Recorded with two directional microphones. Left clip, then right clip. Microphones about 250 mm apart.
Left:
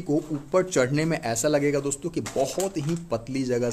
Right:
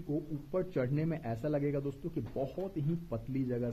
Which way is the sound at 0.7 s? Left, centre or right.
Centre.